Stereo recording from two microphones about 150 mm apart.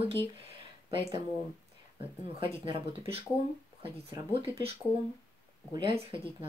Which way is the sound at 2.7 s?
35° right (ahead or behind).